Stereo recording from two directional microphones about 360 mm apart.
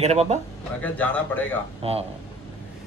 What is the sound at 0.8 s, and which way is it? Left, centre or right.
Speech, centre.